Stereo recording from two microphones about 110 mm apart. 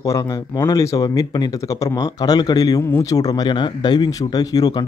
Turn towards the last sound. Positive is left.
turn(degrees=35)  # may be behind; listen again after turning